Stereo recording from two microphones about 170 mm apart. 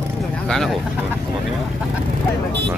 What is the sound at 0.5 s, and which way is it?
Speech, centre (ahead or behind).